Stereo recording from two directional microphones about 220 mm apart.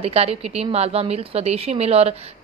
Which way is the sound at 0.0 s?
25° right (ahead or behind).